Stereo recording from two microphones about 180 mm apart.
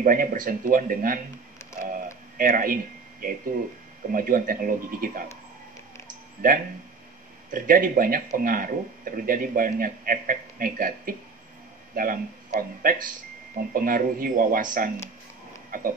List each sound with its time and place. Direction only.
0.0 s speech: 50° right (ahead or behind)
7.5 s speech: 50° right (ahead or behind)
15.7 s a sound: 50° right (ahead or behind)